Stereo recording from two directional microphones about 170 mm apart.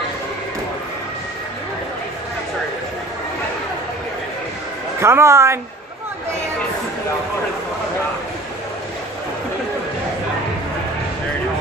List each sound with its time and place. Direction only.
5.0 s a woman's voice: 15° right (ahead or behind)